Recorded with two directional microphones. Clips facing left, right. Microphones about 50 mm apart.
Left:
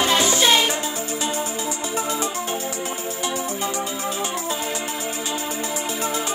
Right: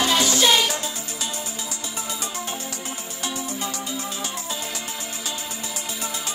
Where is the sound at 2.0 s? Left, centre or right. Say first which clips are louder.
Left 7 dB; left.